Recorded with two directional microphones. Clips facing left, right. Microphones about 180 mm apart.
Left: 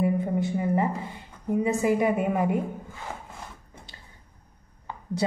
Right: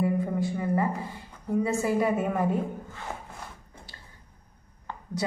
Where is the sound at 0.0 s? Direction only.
20° left (ahead or behind).